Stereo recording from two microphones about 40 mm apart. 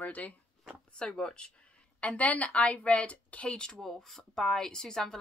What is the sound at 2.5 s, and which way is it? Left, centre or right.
A woman's voice, left.